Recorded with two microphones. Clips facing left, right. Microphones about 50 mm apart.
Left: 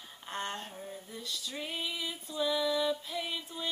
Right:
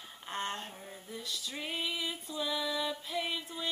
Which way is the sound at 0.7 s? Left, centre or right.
Centre.